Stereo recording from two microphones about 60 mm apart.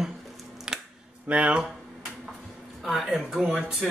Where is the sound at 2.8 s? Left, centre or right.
Centre.